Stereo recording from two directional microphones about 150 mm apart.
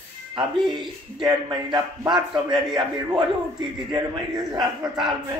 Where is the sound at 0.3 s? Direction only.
30° right (ahead or behind).